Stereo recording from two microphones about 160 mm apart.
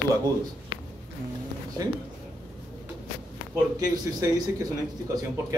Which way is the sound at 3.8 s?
25° right (ahead or behind).